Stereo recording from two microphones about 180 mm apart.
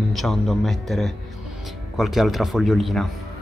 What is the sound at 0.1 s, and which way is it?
Speech, centre (ahead or behind).